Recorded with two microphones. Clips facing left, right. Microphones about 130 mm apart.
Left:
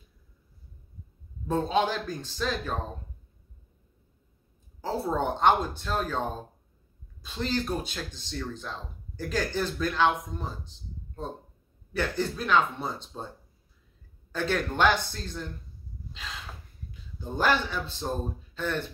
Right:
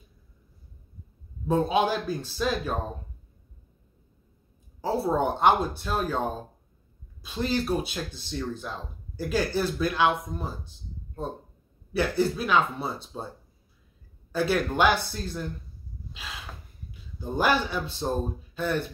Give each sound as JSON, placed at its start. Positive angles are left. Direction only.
{"t": 1.5, "sound": "speech", "side_deg": -10}
{"t": 4.8, "sound": "speech", "side_deg": -10}
{"t": 11.9, "sound": "speech", "side_deg": -10}
{"t": 14.3, "sound": "speech", "side_deg": -10}
{"t": 16.1, "sound": "gasp", "side_deg": -10}
{"t": 16.9, "sound": "a man's voice", "side_deg": -10}